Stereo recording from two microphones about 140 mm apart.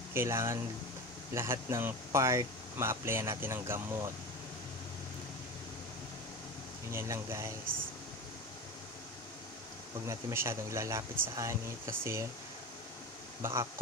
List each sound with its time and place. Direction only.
0.1 s speech: 20° right (ahead or behind)
6.9 s speech: 20° right (ahead or behind)
10.0 s speech: 20° right (ahead or behind)
13.4 s speech: 20° right (ahead or behind)